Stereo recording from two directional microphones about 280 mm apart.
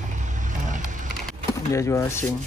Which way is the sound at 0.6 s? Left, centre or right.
Right.